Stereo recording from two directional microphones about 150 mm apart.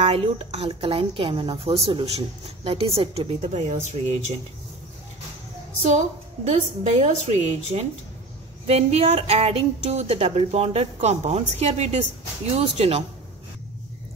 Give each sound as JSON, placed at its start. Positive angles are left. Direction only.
{"t": 0.0, "sound": "a woman's voice", "side_deg": -40}
{"t": 5.8, "sound": "a woman's voice", "side_deg": -50}